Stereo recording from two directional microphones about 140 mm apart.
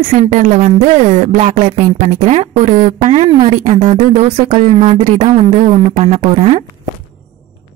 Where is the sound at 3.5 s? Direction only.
60° right (ahead or behind).